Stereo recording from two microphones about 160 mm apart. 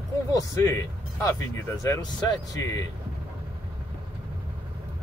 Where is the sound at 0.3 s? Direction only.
20° left (ahead or behind).